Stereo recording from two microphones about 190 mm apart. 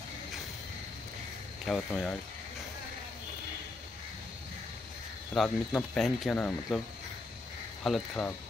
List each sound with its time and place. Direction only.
1.7 s speech: 5° left (ahead or behind)
5.3 s speech: centre (ahead or behind)
7.8 s speech: centre (ahead or behind)